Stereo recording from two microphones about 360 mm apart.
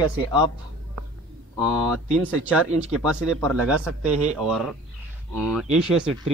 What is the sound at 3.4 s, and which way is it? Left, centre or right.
Speech, right.